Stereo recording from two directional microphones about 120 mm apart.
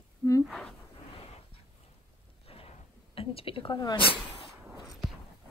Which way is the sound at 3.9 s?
50° left (ahead or behind).